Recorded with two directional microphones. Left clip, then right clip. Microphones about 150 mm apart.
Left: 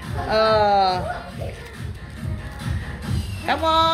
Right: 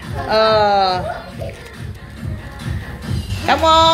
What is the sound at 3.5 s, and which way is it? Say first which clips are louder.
Speech: right 7 dB; 10° left (ahead or behind).